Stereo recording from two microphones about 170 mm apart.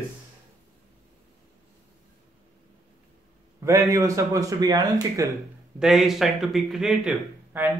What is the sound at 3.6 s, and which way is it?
A man's voice, 20° right (ahead or behind).